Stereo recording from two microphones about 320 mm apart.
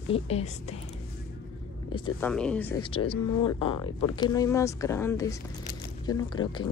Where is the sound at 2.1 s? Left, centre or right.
Centre.